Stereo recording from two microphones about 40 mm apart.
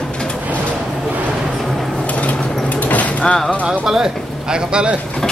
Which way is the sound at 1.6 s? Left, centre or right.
Centre.